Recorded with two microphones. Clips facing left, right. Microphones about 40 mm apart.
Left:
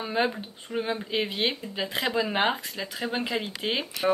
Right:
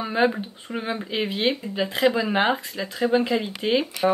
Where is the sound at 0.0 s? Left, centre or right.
Centre.